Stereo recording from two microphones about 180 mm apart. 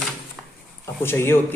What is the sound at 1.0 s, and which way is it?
Speech, 15° left (ahead or behind).